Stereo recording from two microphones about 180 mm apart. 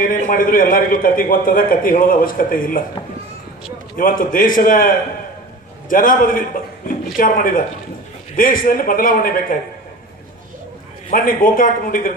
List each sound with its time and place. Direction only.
0.0 s a man's voice: 50° left (ahead or behind)
3.9 s a man's voice: 50° left (ahead or behind)
11.1 s a man's voice: 50° left (ahead or behind)